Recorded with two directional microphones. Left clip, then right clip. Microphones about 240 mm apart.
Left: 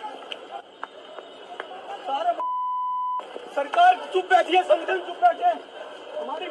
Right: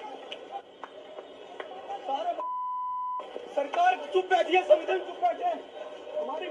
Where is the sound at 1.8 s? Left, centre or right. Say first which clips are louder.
Left 4 dB; left.